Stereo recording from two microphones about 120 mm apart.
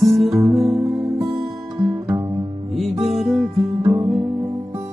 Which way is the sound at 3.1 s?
Centre (ahead or behind).